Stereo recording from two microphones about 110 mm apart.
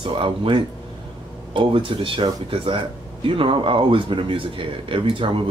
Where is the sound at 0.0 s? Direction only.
50° right (ahead or behind).